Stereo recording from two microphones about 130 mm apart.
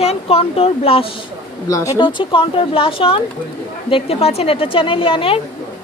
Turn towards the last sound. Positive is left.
turn(degrees=45)  # may be behind; listen again after turning